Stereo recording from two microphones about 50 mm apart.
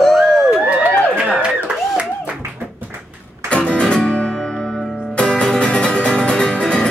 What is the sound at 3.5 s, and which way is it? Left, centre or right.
Music, left.